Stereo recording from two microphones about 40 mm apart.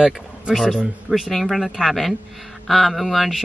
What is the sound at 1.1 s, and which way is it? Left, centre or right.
Speech, centre.